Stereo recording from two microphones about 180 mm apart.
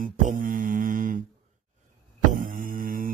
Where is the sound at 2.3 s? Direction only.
50° right (ahead or behind).